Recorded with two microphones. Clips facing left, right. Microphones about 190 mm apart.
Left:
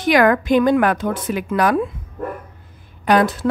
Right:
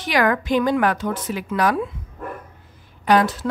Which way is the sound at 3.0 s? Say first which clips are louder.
Left 2 dB; 55° left (ahead or behind).